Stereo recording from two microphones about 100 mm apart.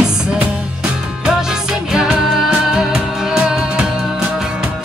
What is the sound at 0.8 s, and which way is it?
Music, 5° right (ahead or behind).